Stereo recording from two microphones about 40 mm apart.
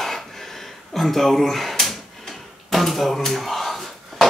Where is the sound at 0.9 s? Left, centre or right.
Centre.